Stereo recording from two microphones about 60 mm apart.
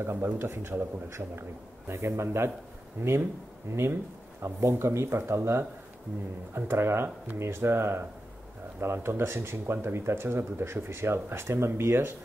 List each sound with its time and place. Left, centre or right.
0.0 s a man's voice: right